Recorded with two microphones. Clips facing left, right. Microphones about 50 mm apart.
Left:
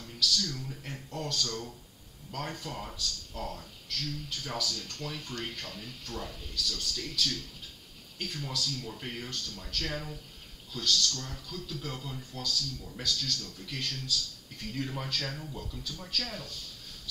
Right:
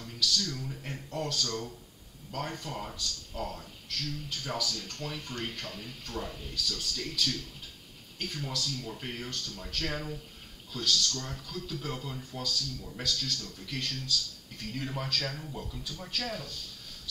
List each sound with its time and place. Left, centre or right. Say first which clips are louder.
0.0 s speech: even; centre
11.1 s speech: right 1 dB; centre